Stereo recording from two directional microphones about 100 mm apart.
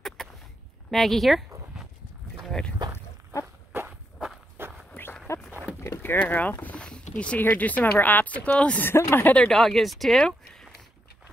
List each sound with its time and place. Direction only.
0.2 s a sound: 5° left (ahead or behind)
0.8 s speech: centre (ahead or behind)
2.4 s boat: 10° left (ahead or behind)
4.6 s walk: 20° right (ahead or behind)
5.0 s dog: 20° left (ahead or behind)
5.8 s vehicle: 25° left (ahead or behind)
6.1 s speech: 15° left (ahead or behind)
9.3 s speech: 5° left (ahead or behind)